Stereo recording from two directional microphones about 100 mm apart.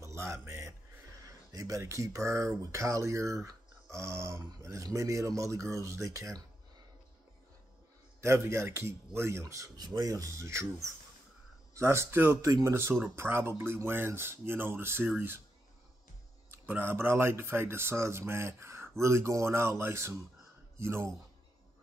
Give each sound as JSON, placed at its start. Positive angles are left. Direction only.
{"t": 0.0, "sound": "a sound", "side_deg": -30}
{"t": 1.2, "sound": "speech", "side_deg": -35}
{"t": 8.2, "sound": "speech", "side_deg": -25}
{"t": 16.4, "sound": "speech", "side_deg": -20}